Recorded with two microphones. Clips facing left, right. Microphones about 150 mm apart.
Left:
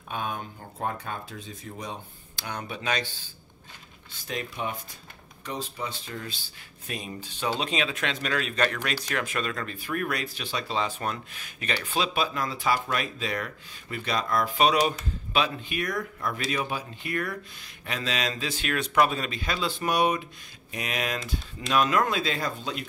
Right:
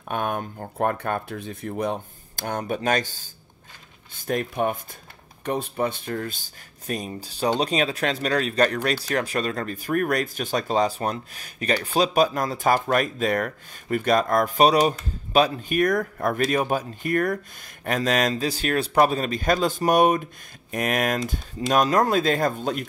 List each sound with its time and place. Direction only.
0.1 s speech: 55° right (ahead or behind)
21.5 s speech: 35° right (ahead or behind)